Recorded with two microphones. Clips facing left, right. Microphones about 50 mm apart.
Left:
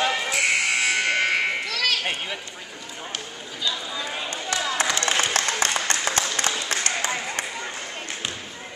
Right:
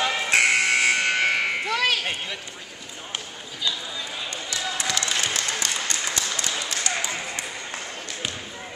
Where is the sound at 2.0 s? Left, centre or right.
Centre.